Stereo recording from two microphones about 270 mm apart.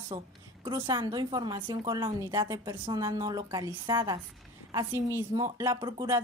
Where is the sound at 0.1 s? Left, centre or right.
Centre.